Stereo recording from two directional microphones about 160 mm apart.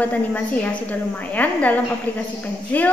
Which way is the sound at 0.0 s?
10° left (ahead or behind).